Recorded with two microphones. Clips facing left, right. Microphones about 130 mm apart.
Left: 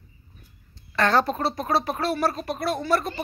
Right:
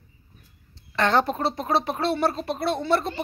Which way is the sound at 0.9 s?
20° right (ahead or behind).